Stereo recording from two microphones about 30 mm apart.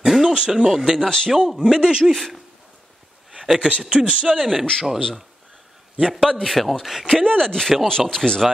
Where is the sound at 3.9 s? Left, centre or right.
Right.